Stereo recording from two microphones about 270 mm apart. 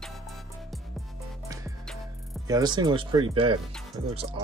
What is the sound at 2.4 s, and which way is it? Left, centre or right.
Speech, centre.